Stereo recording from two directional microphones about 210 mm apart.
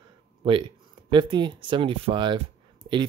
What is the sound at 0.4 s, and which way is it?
Speech, 25° right (ahead or behind).